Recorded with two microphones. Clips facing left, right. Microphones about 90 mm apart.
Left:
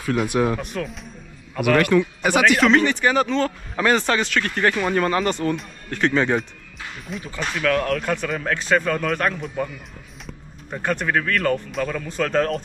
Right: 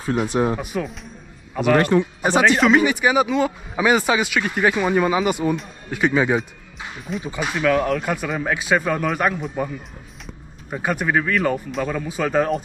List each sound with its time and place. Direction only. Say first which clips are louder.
0.3 s speech: even; 30° right (ahead or behind)
0.6 s speech: right 2 dB; 5° right (ahead or behind)
1.9 s speech: even; 40° right (ahead or behind)
2.2 s speech: right 2 dB; 20° right (ahead or behind)
2.6 s speech: right 1 dB; 10° right (ahead or behind)
10.7 s speech: right 1 dB; 10° right (ahead or behind)